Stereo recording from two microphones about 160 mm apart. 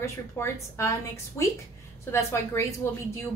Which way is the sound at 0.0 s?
15° left (ahead or behind).